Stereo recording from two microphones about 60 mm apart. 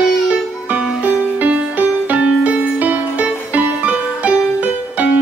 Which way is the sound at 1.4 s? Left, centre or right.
Right.